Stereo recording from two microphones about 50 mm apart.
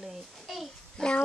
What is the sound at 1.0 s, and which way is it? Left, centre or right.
Speech, centre.